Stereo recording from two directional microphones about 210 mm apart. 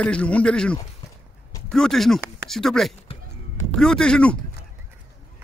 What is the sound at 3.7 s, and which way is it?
Speech, 5° left (ahead or behind).